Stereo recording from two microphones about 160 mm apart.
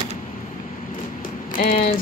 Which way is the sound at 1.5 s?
60° left (ahead or behind).